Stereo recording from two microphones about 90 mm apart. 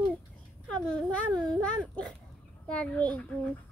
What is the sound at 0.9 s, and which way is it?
A child's voice, 10° left (ahead or behind).